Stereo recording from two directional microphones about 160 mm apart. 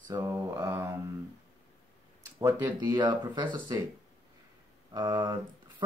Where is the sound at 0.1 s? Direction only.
25° right (ahead or behind).